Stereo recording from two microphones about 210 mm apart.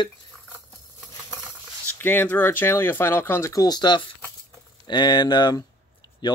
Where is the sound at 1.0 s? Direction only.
5° right (ahead or behind).